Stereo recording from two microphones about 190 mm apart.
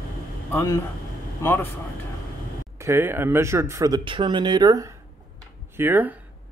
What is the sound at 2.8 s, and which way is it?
Speech, 10° right (ahead or behind).